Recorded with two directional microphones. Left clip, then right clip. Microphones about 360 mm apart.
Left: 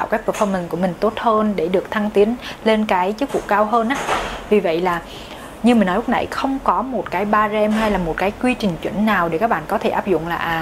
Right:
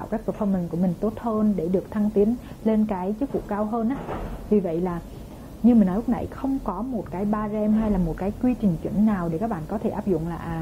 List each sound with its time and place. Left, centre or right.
0.0 s speech: centre